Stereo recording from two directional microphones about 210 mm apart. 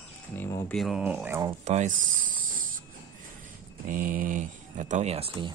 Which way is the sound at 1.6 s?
35° right (ahead or behind).